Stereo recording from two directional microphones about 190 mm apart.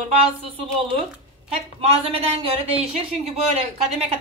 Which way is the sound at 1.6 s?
30° right (ahead or behind).